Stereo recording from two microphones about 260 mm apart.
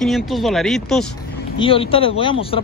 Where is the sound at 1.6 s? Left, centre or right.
Left.